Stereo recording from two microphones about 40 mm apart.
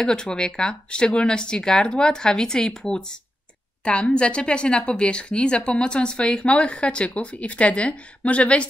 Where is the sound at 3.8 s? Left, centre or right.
Left.